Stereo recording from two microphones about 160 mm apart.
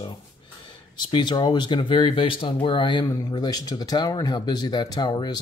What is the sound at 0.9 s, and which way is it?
Speech, 25° left (ahead or behind).